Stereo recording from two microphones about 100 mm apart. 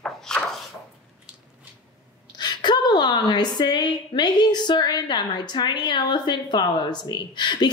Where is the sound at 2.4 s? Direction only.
50° left (ahead or behind).